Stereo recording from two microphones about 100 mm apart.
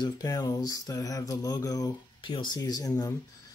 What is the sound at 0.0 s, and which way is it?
Speech, 40° left (ahead or behind).